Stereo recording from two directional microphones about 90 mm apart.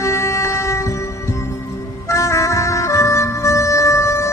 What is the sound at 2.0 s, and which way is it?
Music, 35° left (ahead or behind).